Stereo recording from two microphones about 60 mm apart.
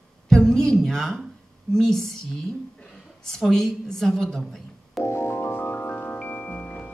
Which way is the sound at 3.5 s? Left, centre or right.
Centre.